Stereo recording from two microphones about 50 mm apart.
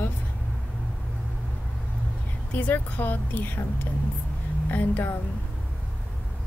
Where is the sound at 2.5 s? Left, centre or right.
Left.